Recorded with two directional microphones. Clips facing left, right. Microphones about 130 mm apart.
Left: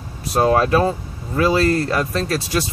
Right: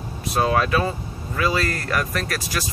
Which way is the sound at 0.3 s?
35° left (ahead or behind).